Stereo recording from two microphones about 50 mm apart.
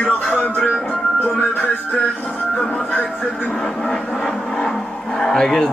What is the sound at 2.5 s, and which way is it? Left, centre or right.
Speech, left.